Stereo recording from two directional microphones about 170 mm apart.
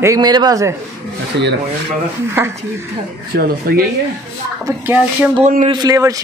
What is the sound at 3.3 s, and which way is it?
Speech, 60° right (ahead or behind).